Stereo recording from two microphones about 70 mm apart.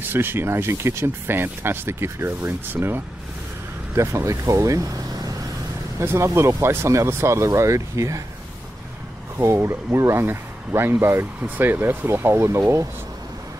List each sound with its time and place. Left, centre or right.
0.1 s speech: right
3.9 s speech: right
5.9 s speech: right
9.4 s speech: right